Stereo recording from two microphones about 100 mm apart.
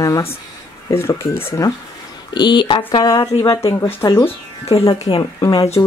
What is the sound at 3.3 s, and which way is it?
Speech, 65° left (ahead or behind).